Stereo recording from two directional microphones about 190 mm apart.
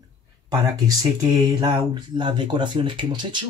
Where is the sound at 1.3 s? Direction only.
20° right (ahead or behind).